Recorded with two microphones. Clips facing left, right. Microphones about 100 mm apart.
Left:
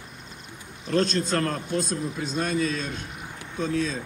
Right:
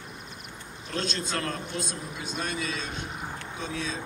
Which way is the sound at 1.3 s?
40° left (ahead or behind).